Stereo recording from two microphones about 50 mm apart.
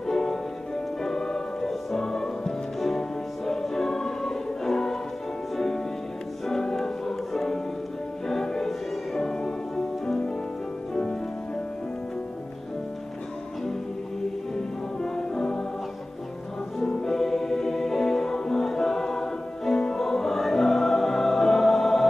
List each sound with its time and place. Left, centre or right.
0.0 s music: centre
6.4 s music: centre
10.9 s music: centre
15.0 s music: centre
16.8 s music: centre